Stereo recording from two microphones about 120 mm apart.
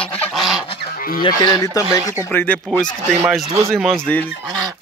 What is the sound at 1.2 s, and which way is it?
Speech, 35° left (ahead or behind).